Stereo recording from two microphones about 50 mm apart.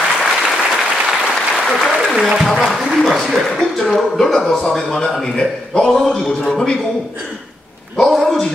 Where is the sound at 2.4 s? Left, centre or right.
Centre.